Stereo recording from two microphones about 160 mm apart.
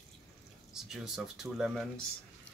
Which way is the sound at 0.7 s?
Centre (ahead or behind).